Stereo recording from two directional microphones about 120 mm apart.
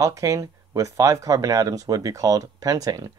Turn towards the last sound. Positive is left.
turn(degrees=-30)  # may be behind; listen again after turning